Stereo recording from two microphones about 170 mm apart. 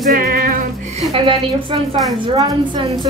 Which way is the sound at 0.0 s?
60° right (ahead or behind).